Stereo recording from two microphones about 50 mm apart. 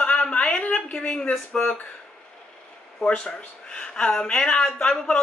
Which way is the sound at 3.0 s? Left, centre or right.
Centre.